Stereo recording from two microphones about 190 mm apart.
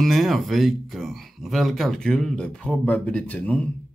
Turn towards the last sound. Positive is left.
turn(degrees=5)  # may be behind; listen again after turning